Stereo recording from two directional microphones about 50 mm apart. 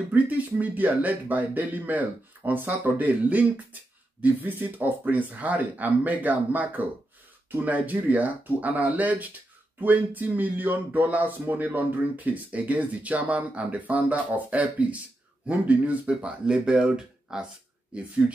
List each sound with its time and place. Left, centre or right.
0.1 s speech: right; by 18.4 s centre